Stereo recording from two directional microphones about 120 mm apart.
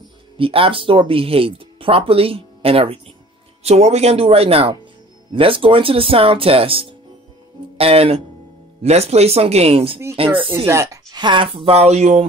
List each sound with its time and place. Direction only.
0.4 s speech: 50° right (ahead or behind)
10.7 s speech: 25° right (ahead or behind); by 12.3 s 70° right (ahead or behind)